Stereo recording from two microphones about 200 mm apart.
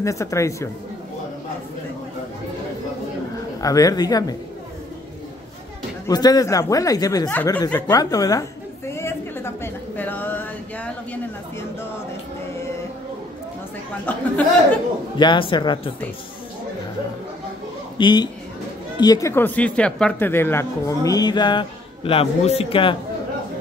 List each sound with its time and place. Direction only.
0.0 s speech: 15° left (ahead or behind)
3.6 s speech: 20° left (ahead or behind)
6.0 s speech: 20° left (ahead or behind)
7.2 s a sound: 10° left (ahead or behind)
14.1 s speech: 10° left (ahead or behind)
15.1 s speech: 25° left (ahead or behind)
17.9 s speech: 20° left (ahead or behind)